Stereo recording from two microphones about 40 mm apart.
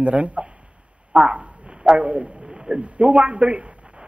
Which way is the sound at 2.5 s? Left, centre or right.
Centre.